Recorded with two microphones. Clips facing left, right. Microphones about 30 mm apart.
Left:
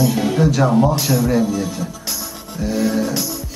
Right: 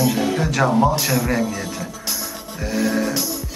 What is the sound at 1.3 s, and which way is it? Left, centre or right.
Speech, right.